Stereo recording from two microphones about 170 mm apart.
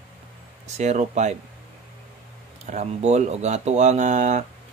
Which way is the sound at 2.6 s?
40° right (ahead or behind).